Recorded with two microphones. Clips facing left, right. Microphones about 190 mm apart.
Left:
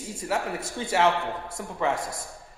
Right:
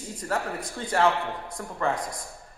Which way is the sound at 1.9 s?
25° left (ahead or behind).